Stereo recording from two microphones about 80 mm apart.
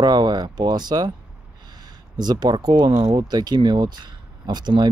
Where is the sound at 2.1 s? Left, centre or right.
Right.